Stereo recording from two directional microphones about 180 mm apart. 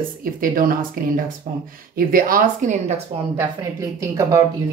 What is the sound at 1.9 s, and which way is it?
Speech, 50° right (ahead or behind).